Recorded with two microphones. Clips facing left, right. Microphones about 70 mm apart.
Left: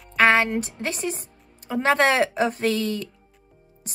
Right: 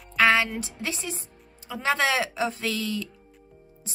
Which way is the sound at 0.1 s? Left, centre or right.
Left.